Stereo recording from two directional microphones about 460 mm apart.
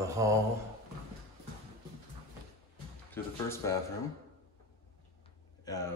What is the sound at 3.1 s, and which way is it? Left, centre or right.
Speech, centre.